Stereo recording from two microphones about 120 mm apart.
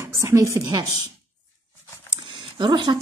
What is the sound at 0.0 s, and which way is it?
Speech, 25° right (ahead or behind).